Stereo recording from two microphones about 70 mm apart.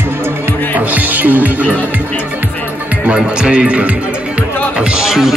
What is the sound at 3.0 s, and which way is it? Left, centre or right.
Music, centre.